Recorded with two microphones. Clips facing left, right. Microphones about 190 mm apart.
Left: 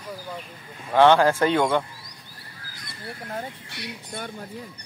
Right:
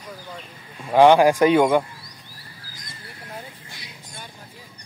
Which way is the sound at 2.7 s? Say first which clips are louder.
Left 7 dB; 60° left (ahead or behind).